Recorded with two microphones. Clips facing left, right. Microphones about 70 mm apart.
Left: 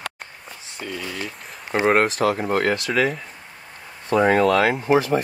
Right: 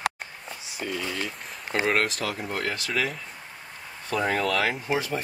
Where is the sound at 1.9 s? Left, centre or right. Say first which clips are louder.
Left 9 dB; left.